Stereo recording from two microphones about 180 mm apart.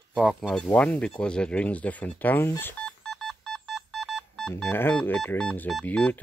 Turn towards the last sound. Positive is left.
turn(degrees=10)  # may be behind; listen again after turning